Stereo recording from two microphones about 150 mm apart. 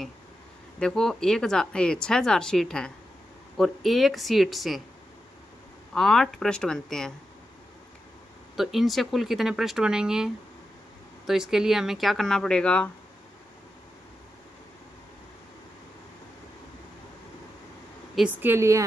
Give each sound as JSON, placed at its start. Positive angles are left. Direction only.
{"t": 0.7, "sound": "speech", "side_deg": 5}
{"t": 5.9, "sound": "speech", "side_deg": 0}
{"t": 8.5, "sound": "speech", "side_deg": 0}
{"t": 18.1, "sound": "speech", "side_deg": -10}